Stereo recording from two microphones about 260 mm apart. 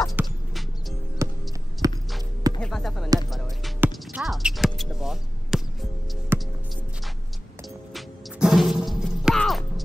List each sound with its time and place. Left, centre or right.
0.0 s music: centre
1.2 s music: centre
1.8 s walk: centre
2.6 s a sound: centre
3.3 s music: centre
7.9 s music: centre